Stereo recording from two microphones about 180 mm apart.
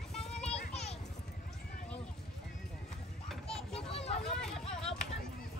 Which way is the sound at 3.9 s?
35° left (ahead or behind).